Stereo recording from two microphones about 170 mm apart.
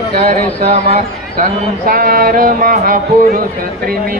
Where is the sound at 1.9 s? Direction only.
60° right (ahead or behind).